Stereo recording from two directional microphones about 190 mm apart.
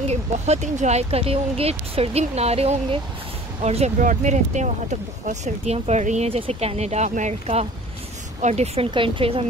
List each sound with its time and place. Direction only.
0.1 s speech: 35° right (ahead or behind)